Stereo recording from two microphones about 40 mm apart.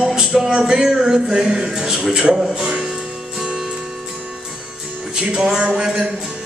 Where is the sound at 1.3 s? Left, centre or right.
Right.